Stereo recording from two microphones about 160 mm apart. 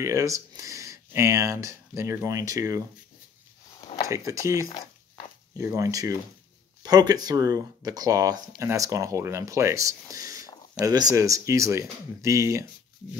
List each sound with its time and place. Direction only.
0.0 s speech: 20° right (ahead or behind)
3.9 s a sound: 35° left (ahead or behind)
4.3 s speech: 20° right (ahead or behind)